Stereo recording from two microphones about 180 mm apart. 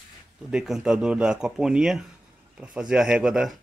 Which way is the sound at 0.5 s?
5° right (ahead or behind).